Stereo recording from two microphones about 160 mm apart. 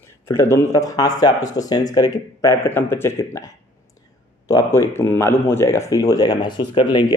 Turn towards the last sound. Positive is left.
turn(degrees=30)  # may be behind; listen again after turning